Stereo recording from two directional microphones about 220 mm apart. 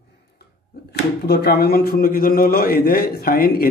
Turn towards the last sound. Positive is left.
turn(degrees=45)  # may be behind; listen again after turning